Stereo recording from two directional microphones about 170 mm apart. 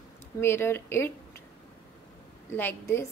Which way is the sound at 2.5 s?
15° left (ahead or behind).